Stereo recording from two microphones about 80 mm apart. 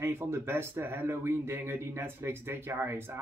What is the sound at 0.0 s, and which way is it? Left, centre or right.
Speech, right.